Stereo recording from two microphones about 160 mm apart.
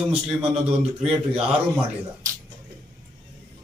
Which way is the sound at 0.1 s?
5° right (ahead or behind).